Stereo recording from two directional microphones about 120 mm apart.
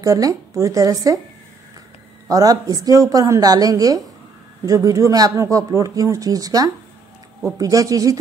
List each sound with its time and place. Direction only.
0.0 s speech: 30° right (ahead or behind)
2.2 s a woman's voice: 30° right (ahead or behind)